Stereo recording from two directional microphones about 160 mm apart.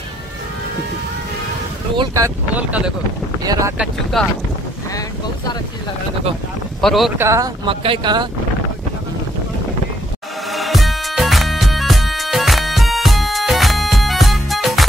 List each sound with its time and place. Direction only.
2.0 s speech: 20° right (ahead or behind)
2.5 s speech: 10° right (ahead or behind)
3.4 s speech: 20° right (ahead or behind)
3.7 s speech: centre (ahead or behind)
6.8 s speech: centre (ahead or behind)
7.2 s speech: 20° right (ahead or behind)
7.6 s speech: 35° right (ahead or behind)
10.5 s music: centre (ahead or behind)